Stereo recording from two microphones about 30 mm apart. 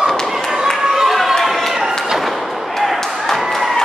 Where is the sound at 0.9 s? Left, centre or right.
Centre.